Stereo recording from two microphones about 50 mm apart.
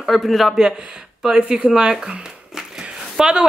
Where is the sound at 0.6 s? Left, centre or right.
Centre.